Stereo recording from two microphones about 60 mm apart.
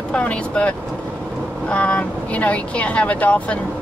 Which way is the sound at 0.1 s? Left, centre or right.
Left.